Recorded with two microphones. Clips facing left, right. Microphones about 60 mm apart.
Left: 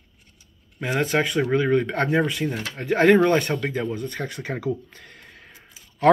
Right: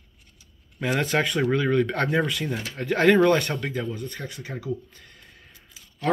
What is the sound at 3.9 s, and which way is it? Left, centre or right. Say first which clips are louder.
Speech: left 4 dB; left.